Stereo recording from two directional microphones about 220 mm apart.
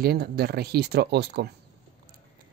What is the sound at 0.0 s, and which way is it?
Speech, 45° right (ahead or behind).